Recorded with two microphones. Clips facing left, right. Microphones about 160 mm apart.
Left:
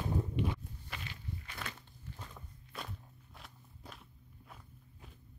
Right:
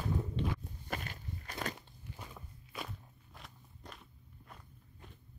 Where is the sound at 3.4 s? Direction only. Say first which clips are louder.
Right 1 dB; centre (ahead or behind).